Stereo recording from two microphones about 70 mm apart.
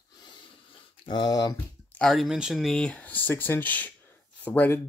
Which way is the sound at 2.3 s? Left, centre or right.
Centre.